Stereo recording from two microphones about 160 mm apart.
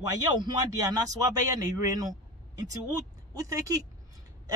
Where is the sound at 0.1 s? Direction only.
25° right (ahead or behind).